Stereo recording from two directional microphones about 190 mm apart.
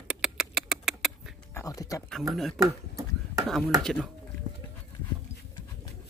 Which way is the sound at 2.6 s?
15° right (ahead or behind).